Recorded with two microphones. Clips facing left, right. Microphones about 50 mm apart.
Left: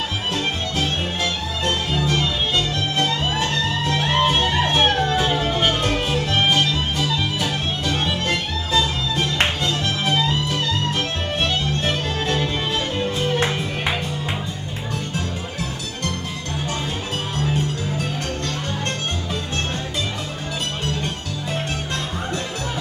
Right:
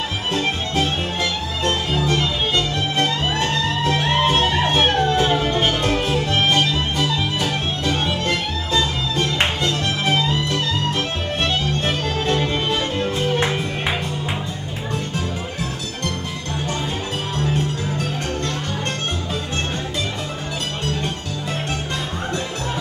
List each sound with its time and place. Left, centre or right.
0.3 s music: centre
17.4 s music: centre